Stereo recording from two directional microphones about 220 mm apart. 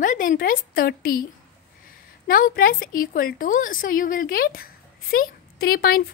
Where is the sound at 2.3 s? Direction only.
40° left (ahead or behind).